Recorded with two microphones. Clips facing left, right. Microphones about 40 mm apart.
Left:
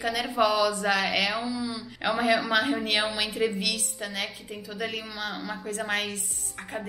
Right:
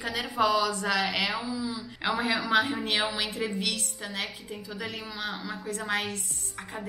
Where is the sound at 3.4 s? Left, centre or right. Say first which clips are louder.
Left 7 dB; centre.